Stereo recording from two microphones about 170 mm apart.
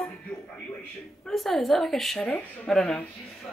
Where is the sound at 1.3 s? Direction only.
Centre (ahead or behind).